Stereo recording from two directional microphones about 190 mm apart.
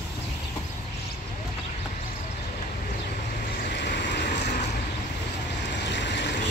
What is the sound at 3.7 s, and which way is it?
Vehicle, 65° left (ahead or behind).